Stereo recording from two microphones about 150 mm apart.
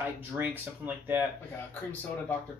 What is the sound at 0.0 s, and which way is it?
Speech, 10° right (ahead or behind).